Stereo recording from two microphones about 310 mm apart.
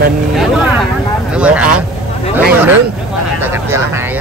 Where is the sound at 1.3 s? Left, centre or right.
Centre.